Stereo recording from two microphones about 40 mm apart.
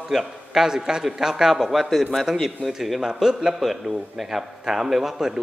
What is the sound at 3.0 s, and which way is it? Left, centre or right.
A man's voice, centre.